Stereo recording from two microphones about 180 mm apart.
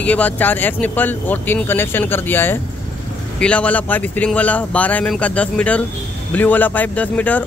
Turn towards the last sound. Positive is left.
turn(degrees=10)  # may be behind; listen again after turning